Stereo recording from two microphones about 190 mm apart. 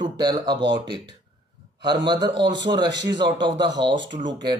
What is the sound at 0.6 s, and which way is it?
Speech, 65° right (ahead or behind).